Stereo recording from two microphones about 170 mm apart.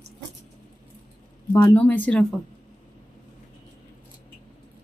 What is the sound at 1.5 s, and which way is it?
Speech, 15° left (ahead or behind).